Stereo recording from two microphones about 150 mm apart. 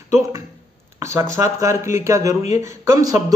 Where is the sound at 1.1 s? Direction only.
20° right (ahead or behind).